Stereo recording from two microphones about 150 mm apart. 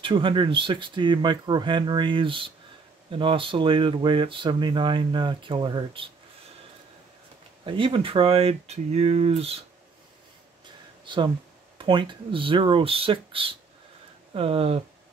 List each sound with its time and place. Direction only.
0.0 s speech: 35° right (ahead or behind)
7.6 s speech: 35° right (ahead or behind)
11.8 s speech: 30° right (ahead or behind)